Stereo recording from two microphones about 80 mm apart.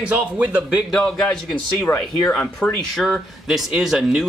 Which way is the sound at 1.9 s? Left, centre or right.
Left.